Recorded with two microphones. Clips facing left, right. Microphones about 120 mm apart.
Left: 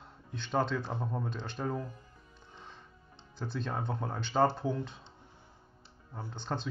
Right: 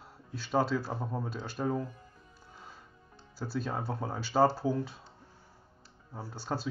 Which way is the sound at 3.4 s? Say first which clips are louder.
Right 2 dB; 5° right (ahead or behind).